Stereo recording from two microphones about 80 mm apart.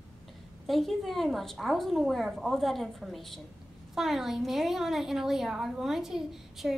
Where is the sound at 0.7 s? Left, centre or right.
Centre.